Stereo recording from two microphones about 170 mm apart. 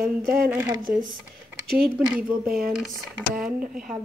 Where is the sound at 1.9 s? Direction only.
5° right (ahead or behind).